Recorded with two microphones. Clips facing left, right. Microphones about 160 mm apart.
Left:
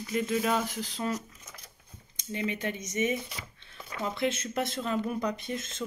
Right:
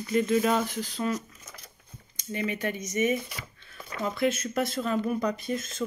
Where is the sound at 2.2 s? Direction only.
20° left (ahead or behind).